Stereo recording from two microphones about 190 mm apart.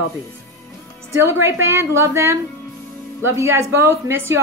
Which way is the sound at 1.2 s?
15° right (ahead or behind).